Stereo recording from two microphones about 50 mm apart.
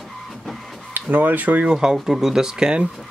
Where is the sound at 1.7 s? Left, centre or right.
Centre.